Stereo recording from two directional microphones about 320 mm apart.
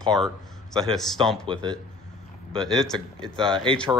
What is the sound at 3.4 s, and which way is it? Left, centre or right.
Speech, centre.